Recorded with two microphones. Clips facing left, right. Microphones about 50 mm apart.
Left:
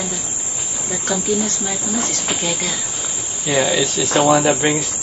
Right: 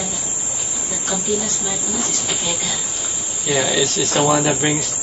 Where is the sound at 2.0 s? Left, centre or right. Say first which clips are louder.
Left 2 dB; left.